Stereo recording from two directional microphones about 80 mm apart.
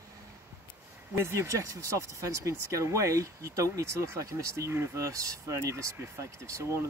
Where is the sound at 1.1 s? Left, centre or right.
Right.